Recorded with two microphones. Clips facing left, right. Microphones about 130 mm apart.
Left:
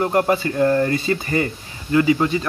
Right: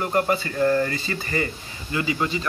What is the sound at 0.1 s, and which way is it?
Speech, 50° left (ahead or behind).